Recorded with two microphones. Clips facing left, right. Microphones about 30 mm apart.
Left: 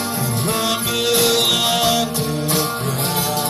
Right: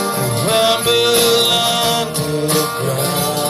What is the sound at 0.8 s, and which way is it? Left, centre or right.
Music, right.